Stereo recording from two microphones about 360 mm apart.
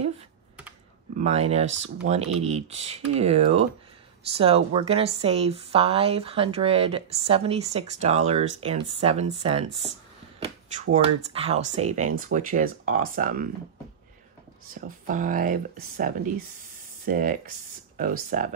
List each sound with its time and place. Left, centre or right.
1.1 s speech: centre
10.7 s speech: centre
14.7 s speech: right